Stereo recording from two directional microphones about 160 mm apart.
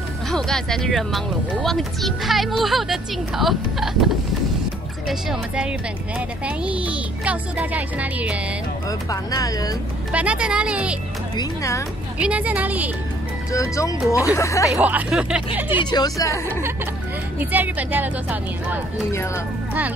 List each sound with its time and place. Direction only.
0.3 s speech: 5° left (ahead or behind)
5.0 s speech: 5° right (ahead or behind)
9.1 s speech: 20° left (ahead or behind)
10.1 s speech: 5° right (ahead or behind)
11.3 s speech: 20° left (ahead or behind)
12.2 s speech: 10° right (ahead or behind)
13.5 s speech: 20° left (ahead or behind)
14.8 s speech: 10° right (ahead or behind)
15.8 s speech: 25° left (ahead or behind)
17.4 s speech: 10° right (ahead or behind)